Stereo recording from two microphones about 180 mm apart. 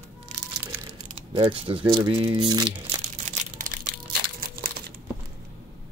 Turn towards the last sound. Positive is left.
turn(degrees=-55)  # may be behind; listen again after turning